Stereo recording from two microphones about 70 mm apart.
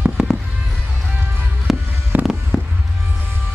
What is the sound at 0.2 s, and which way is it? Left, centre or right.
Fireworks, centre.